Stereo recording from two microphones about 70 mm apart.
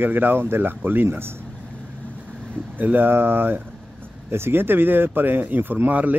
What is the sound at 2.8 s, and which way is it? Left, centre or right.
Speech, right.